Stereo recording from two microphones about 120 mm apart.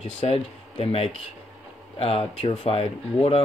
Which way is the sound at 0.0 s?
55° left (ahead or behind).